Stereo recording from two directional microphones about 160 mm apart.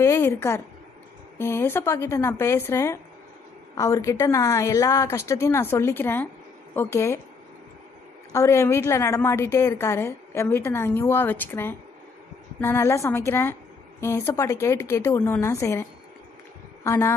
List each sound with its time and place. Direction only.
0.0 s a woman's voice: 20° left (ahead or behind)
8.3 s a woman's voice: 20° left (ahead or behind)